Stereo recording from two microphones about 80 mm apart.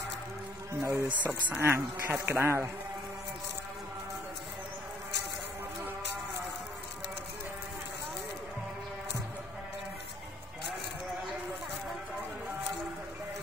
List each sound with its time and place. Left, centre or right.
0.7 s speech: right